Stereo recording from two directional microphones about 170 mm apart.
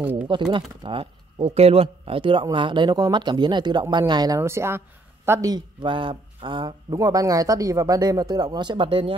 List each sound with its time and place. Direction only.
0.0 s speech: 10° right (ahead or behind)
0.3 s a man's voice: 30° right (ahead or behind)